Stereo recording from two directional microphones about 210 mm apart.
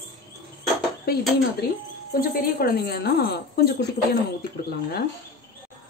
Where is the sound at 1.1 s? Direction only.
45° left (ahead or behind).